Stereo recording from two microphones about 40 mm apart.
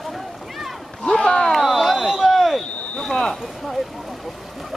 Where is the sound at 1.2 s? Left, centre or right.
Centre.